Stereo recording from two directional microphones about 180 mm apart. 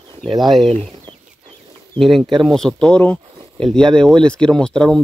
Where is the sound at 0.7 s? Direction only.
35° right (ahead or behind).